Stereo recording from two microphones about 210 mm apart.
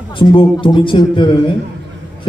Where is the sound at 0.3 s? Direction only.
25° left (ahead or behind).